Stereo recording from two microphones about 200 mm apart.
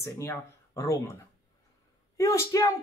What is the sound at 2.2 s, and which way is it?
Speech, 15° left (ahead or behind).